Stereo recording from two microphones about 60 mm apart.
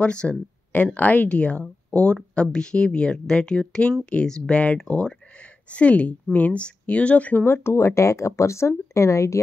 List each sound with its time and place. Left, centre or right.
0.0 s speech: centre
0.9 s speech: left
7.4 s speech: left